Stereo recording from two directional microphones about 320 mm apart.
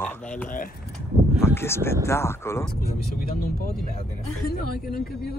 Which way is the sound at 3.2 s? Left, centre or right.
Left.